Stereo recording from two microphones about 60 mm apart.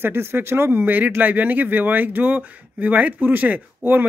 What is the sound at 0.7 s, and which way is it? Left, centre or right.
Speech, right.